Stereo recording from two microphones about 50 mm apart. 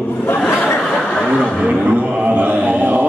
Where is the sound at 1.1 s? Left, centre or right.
Centre.